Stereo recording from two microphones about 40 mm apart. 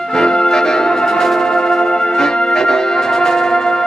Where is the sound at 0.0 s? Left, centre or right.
Centre.